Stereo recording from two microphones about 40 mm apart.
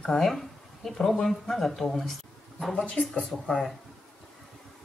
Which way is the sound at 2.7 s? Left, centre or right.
Centre.